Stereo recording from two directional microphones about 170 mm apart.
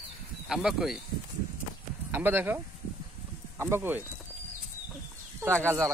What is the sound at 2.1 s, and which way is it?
Speech, 10° right (ahead or behind).